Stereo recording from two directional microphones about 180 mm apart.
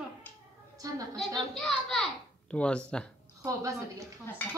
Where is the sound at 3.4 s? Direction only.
20° right (ahead or behind).